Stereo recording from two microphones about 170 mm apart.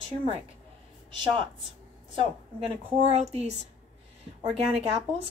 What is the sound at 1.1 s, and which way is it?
A woman's voice, 30° right (ahead or behind).